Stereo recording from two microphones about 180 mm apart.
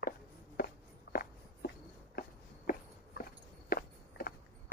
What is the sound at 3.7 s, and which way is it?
Walk, 55° left (ahead or behind).